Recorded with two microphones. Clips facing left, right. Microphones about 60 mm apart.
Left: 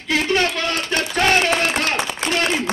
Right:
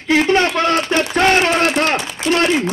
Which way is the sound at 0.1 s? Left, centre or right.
Right.